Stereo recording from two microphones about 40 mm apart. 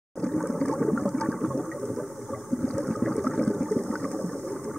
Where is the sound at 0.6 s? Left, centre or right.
Centre.